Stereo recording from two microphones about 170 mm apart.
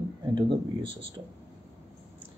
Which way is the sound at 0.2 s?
30° right (ahead or behind).